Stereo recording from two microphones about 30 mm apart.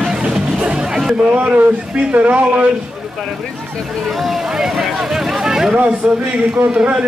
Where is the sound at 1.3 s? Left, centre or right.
Right.